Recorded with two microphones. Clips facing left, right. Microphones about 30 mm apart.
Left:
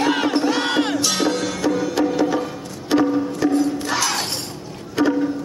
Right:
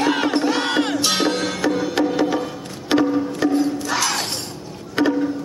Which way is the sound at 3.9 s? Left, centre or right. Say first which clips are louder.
Even; centre.